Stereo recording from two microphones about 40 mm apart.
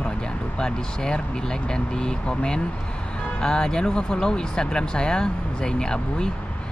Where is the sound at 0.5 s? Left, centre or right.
Centre.